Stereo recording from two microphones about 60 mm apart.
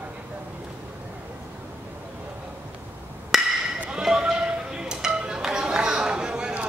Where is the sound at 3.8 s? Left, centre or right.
Centre.